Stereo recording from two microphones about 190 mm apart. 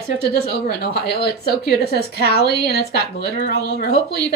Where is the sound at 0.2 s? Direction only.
60° left (ahead or behind).